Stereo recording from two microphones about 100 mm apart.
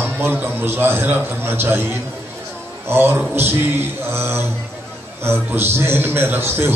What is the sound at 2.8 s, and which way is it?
A man's voice, 25° right (ahead or behind).